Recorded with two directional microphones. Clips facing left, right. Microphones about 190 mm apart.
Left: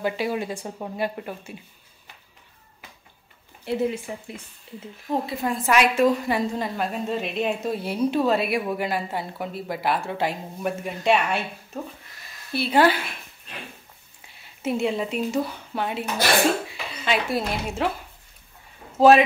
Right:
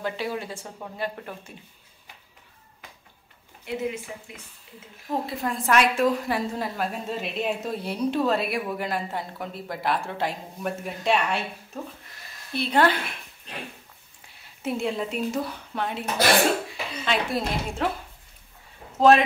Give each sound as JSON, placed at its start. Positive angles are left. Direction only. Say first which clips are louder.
{"t": 0.0, "sound": "speech", "louder": "left 4 dB", "side_deg": 15}
{"t": 3.6, "sound": "speech", "louder": "left 5 dB", "side_deg": 35}
{"t": 5.1, "sound": "a woman's voice", "louder": "left 2 dB", "side_deg": 0}
{"t": 14.4, "sound": "a woman's voice", "louder": "left 3 dB", "side_deg": 0}
{"t": 18.9, "sound": "speech", "louder": "left 3 dB", "side_deg": 5}